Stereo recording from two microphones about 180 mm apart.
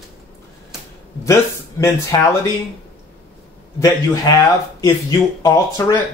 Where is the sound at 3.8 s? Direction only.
20° left (ahead or behind).